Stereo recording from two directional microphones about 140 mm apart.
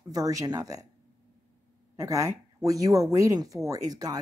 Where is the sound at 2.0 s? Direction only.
25° right (ahead or behind).